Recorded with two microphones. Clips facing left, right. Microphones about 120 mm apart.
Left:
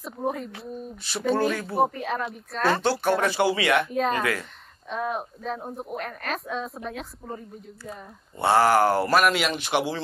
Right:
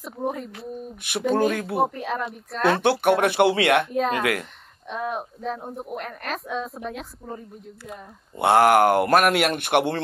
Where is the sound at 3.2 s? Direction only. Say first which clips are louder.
Right 4 dB; 65° right (ahead or behind).